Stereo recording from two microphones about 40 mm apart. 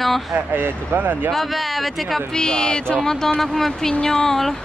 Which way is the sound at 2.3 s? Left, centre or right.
Left.